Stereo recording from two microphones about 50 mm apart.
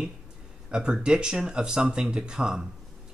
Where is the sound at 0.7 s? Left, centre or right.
Centre.